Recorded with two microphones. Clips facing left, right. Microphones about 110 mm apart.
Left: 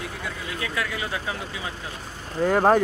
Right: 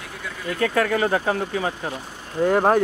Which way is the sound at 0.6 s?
50° right (ahead or behind).